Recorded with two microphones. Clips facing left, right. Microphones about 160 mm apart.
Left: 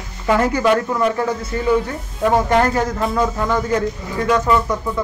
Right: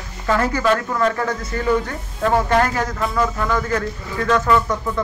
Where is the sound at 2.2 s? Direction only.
15° left (ahead or behind).